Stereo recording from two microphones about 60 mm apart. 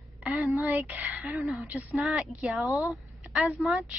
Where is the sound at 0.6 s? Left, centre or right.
Right.